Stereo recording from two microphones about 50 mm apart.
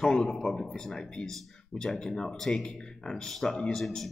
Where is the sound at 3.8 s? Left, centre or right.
Centre.